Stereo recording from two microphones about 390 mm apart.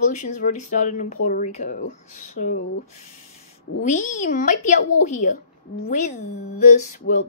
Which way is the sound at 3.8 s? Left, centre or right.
Centre.